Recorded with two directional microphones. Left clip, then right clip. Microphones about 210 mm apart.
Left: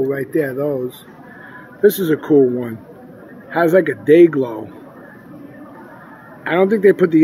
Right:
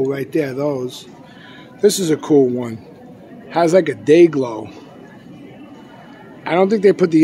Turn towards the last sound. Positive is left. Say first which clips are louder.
# left 1 dB
turn(degrees=-10)  # may be behind; listen again after turning